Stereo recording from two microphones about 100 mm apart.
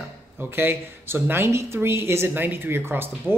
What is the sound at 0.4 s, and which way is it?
Speech, 20° right (ahead or behind).